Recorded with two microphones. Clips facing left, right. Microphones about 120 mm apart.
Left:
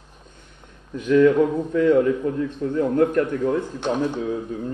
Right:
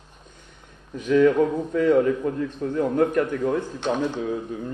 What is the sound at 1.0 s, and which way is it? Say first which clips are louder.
Speech: left 2 dB; 40° right (ahead or behind).